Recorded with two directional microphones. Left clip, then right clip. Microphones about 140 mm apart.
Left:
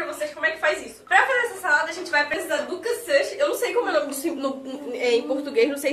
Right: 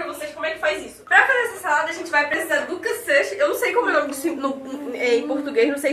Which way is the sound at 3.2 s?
15° left (ahead or behind).